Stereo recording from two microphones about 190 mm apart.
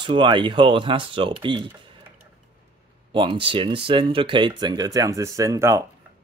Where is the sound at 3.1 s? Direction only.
25° right (ahead or behind).